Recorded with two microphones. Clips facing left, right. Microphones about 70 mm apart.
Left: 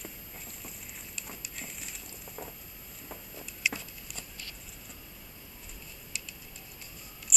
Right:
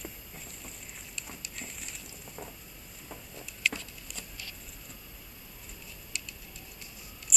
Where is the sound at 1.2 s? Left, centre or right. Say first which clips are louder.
Left 1 dB; centre.